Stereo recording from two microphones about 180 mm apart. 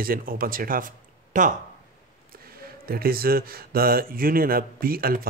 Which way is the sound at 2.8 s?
55° right (ahead or behind).